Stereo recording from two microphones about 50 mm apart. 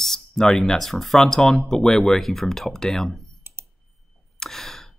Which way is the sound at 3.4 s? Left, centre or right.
Right.